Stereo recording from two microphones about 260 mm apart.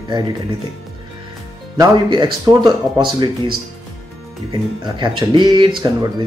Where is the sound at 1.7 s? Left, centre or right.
Centre.